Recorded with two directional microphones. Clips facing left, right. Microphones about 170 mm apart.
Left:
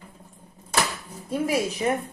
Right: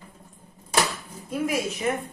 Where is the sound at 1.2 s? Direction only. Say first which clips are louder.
Left 2 dB; 35° left (ahead or behind).